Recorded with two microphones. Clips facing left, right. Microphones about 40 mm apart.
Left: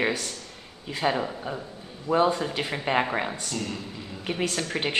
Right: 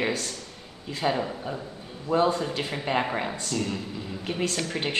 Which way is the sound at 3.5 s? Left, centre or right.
Centre.